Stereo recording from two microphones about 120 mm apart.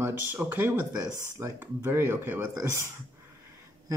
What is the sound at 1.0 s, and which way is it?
Speech, 25° right (ahead or behind).